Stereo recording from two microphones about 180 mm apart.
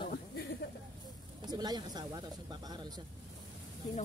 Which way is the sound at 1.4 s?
20° right (ahead or behind).